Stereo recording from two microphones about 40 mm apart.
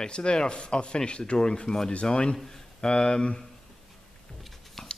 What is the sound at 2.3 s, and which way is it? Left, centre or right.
Speech, centre.